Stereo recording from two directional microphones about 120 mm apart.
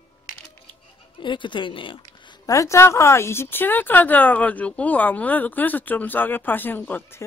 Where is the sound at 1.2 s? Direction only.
40° left (ahead or behind).